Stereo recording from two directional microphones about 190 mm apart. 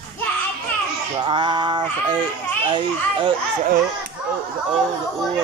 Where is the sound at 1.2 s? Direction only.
25° right (ahead or behind).